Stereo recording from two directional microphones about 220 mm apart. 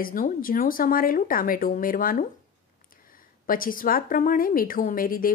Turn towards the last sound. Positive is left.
turn(degrees=40)  # may be behind; listen again after turning